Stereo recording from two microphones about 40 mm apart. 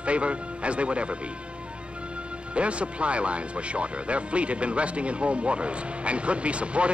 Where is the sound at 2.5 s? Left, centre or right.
Right.